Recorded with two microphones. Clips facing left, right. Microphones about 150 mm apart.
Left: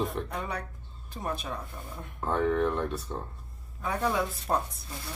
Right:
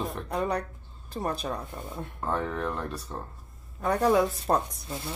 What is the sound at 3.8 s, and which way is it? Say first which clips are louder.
Speech: right 6 dB; 45° right (ahead or behind).